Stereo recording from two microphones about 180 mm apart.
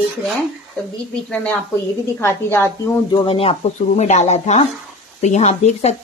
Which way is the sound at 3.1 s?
30° left (ahead or behind).